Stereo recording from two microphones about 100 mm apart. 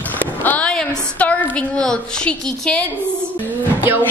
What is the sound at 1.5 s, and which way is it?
A woman's voice, 10° left (ahead or behind).